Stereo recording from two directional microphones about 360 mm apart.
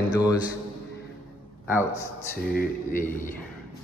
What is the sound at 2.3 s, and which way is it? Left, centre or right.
Speech, left.